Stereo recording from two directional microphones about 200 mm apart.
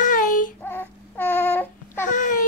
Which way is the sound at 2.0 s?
40° left (ahead or behind).